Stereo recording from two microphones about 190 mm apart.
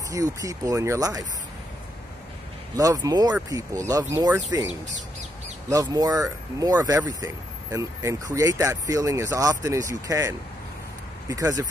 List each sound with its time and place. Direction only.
0.1 s speech: 20° right (ahead or behind)
2.8 s speech: 20° right (ahead or behind)
5.7 s speech: 20° right (ahead or behind)